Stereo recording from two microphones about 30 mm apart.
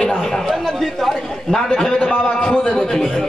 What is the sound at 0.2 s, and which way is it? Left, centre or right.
Chatter, centre.